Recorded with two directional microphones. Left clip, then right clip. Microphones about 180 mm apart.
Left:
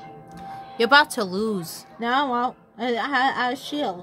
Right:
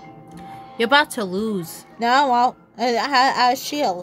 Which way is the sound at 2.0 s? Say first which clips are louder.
Right 6 dB; 45° right (ahead or behind).